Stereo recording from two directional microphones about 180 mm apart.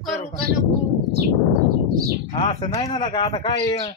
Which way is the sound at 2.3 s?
25° left (ahead or behind).